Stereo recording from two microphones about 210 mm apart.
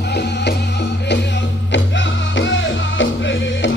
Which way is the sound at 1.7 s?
60° left (ahead or behind).